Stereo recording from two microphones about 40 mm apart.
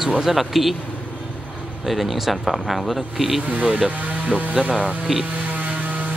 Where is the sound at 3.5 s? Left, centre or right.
Right.